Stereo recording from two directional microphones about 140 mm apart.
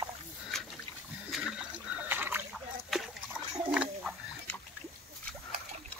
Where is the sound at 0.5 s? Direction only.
5° left (ahead or behind); by 2.5 s 15° right (ahead or behind).